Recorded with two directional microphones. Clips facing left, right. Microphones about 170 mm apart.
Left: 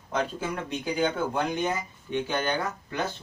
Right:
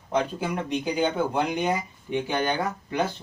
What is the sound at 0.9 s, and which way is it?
Speech, 15° right (ahead or behind).